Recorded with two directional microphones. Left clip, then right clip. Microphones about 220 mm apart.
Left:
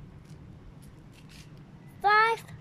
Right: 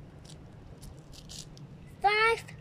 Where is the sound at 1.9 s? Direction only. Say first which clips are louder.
Left 3 dB; 10° left (ahead or behind).